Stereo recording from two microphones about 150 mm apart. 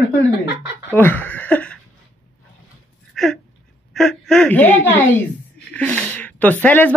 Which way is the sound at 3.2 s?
Centre (ahead or behind).